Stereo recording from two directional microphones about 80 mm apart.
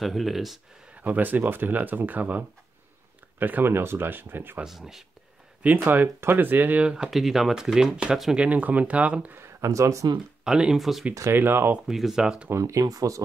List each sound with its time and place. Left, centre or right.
0.0 s speech: centre
0.9 s speech: right
4.6 s speech: centre
5.6 s speech: right
6.9 s speech: centre
8.5 s speech: centre
9.4 s speech: right
10.4 s speech: centre
11.3 s speech: right
11.9 s speech: centre
12.4 s speech: right